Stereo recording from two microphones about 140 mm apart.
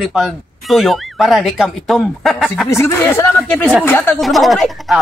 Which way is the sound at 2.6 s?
20° left (ahead or behind).